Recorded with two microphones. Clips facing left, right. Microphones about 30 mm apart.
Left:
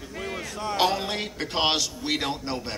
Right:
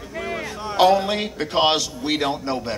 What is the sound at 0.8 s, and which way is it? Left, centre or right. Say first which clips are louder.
Speech: right 8 dB; centre.